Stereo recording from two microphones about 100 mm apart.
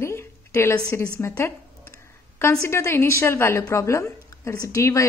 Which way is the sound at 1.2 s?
30° left (ahead or behind).